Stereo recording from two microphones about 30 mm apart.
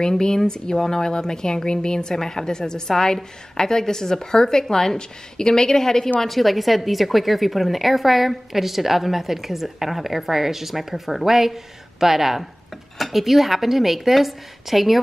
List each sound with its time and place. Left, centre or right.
0.5 s a woman's voice: left
6.2 s speech: centre
11.2 s speech: centre